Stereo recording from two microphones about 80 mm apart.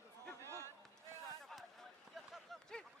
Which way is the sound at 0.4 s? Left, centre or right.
Right.